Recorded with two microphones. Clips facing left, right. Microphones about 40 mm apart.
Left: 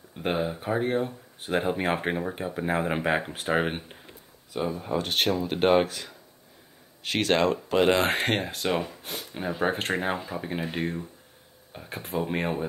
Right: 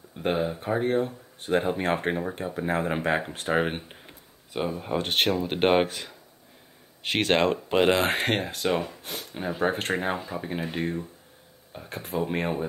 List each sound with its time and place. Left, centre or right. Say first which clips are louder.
0.2 s speech: right 1 dB; centre
4.6 s speech: even; centre
4.9 s speech: right 1 dB; right
7.9 s speech: even; centre